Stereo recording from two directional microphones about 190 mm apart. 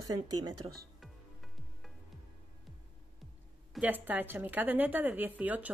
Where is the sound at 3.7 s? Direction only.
10° right (ahead or behind).